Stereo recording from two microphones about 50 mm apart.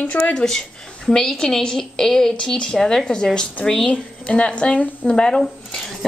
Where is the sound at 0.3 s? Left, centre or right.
Centre.